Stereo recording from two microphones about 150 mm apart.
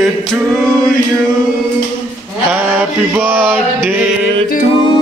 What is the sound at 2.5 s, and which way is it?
Mantra, 10° right (ahead or behind).